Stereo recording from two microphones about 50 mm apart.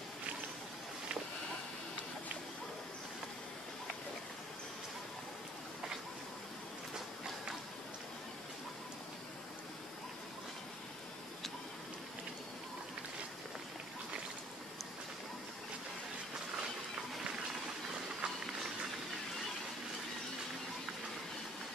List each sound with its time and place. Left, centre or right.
18.2 s run: centre